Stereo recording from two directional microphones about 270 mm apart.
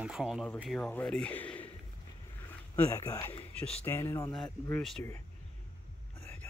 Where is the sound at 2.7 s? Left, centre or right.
Centre.